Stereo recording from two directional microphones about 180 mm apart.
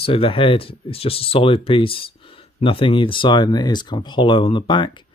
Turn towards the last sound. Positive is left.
turn(degrees=25)  # may be behind; listen again after turning